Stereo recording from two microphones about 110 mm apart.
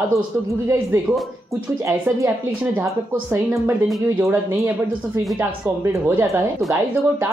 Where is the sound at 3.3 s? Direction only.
25° right (ahead or behind).